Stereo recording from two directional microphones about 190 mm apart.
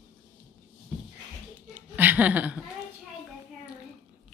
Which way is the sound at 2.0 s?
10° right (ahead or behind).